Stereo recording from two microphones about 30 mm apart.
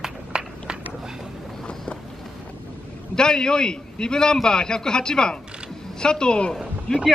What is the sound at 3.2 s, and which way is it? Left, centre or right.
A man's voice, left.